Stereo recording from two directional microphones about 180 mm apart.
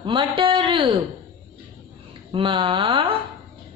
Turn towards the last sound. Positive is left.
turn(degrees=-30)  # may be behind; listen again after turning